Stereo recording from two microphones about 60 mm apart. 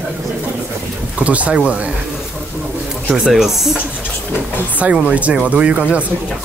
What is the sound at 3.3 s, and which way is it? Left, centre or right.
Speech, centre.